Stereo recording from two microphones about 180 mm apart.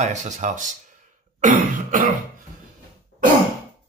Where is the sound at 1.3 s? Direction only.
45° right (ahead or behind).